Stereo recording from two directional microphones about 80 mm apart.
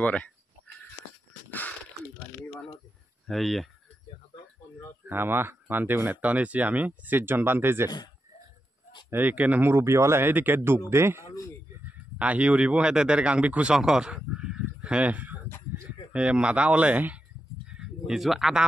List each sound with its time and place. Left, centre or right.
0.0 s speech: centre
1.5 s a sound: left
3.3 s speech: centre
5.0 s speech: right
9.1 s speech: right
11.8 s speech: centre
17.6 s a sound: centre